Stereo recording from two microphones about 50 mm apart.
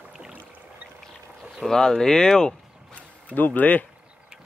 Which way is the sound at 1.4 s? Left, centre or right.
Centre.